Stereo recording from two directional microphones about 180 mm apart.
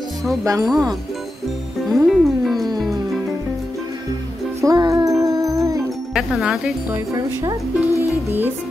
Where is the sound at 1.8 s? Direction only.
Centre (ahead or behind).